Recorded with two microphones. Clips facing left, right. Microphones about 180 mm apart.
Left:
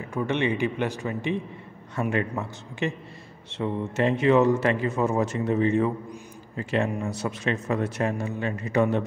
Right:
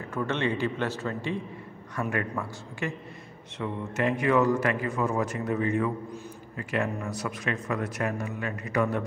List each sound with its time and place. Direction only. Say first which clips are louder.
0.1 s speech: left 3 dB; 15° left (ahead or behind)